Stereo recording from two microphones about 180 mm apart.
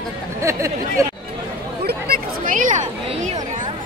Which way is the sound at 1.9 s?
55° right (ahead or behind).